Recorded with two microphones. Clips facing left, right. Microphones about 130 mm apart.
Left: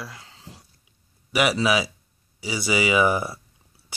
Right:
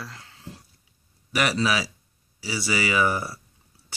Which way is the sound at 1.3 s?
10° left (ahead or behind).